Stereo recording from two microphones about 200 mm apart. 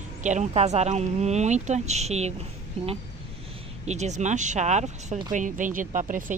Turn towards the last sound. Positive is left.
turn(degrees=-40)  # may be behind; listen again after turning